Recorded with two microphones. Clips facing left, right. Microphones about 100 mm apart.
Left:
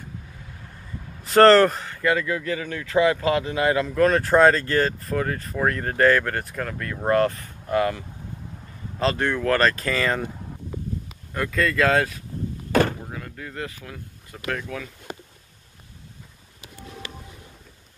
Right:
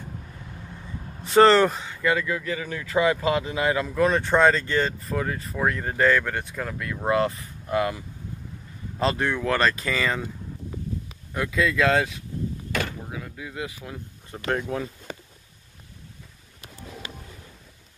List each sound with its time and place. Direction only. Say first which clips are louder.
1.2 s speech: left 2 dB; centre (ahead or behind)
9.2 s speech: left 4 dB; centre (ahead or behind)
11.3 s speech: left 1 dB; 5° right (ahead or behind); by 14.9 s 25° right (ahead or behind)